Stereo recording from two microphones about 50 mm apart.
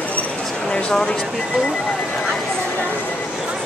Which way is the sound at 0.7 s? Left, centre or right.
Centre.